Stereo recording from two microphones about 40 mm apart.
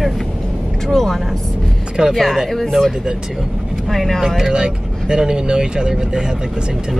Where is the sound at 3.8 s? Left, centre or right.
Centre.